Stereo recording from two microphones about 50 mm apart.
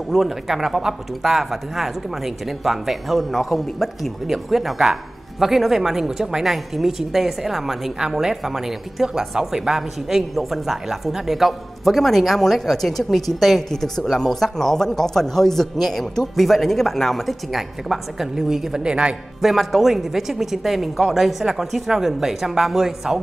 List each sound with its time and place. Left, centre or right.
0.1 s speech: centre
18.8 s a man's voice: centre
19.4 s speech: centre